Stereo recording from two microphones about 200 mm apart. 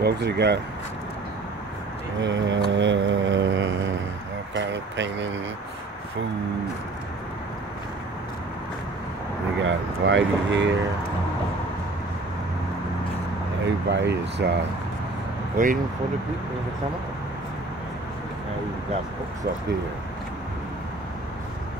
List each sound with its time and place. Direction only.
0.0 s speech: 55° right (ahead or behind)
2.2 s speech: 65° right (ahead or behind)
2.7 s mantra: 65° right (ahead or behind)
4.6 s speech: 65° right (ahead or behind)
9.6 s speech: 70° right (ahead or behind)
13.7 s speech: 60° right (ahead or behind)
15.5 s speech: 40° right (ahead or behind)